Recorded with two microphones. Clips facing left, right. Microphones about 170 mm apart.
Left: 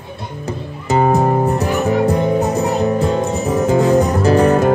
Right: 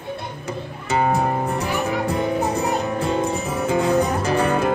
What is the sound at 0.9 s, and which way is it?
Music, 40° left (ahead or behind).